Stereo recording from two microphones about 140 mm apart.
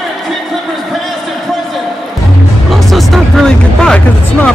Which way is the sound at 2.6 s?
Centre (ahead or behind).